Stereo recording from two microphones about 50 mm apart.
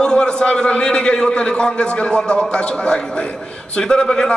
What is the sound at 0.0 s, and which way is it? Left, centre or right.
A man's voice, centre.